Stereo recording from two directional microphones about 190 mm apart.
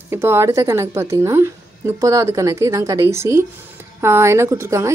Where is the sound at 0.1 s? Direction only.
15° right (ahead or behind).